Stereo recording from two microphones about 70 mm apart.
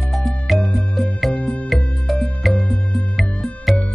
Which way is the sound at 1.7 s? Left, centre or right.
Centre.